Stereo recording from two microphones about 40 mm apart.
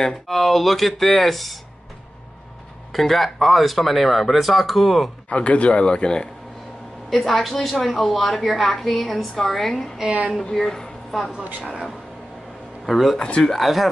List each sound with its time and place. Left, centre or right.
0.0 s speech: centre
2.9 s speech: centre
5.3 s a man's voice: left
7.4 s speech: centre
10.0 s a woman's voice: right
10.5 s a woman's voice: centre
12.8 s speech: centre